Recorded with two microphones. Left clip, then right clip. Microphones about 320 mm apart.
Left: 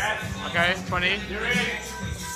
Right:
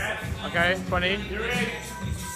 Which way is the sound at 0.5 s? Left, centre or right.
Centre.